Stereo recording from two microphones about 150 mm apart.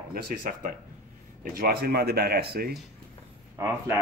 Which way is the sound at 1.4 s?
90° right.